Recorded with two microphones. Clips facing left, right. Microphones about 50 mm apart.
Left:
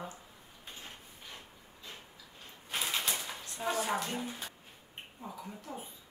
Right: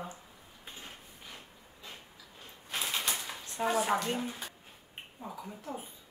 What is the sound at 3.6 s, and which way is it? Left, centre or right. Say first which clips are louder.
Speech: right 4 dB; right.